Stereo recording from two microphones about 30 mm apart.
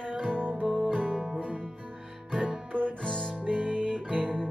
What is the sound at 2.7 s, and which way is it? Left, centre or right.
Music, left.